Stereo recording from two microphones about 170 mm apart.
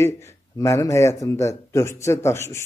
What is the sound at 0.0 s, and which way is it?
Speech, 15° left (ahead or behind).